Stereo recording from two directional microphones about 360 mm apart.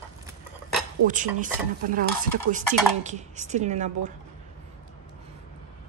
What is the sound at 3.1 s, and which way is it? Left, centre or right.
Speech, centre.